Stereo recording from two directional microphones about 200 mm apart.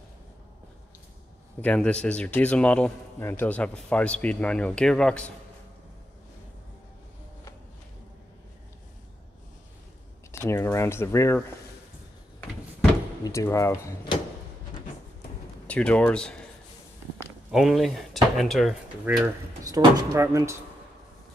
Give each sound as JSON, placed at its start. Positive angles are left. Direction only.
{"t": 1.6, "sound": "a man's voice", "side_deg": 5}
{"t": 10.3, "sound": "a man's voice", "side_deg": 15}
{"t": 13.2, "sound": "a man's voice", "side_deg": 15}
{"t": 15.6, "sound": "speech", "side_deg": 5}
{"t": 17.5, "sound": "speech", "side_deg": 0}
{"t": 19.1, "sound": "speech", "side_deg": -15}